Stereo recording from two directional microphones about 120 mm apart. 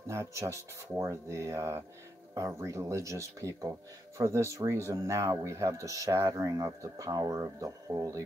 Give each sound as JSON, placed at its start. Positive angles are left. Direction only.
{"t": 0.1, "sound": "speech", "side_deg": -25}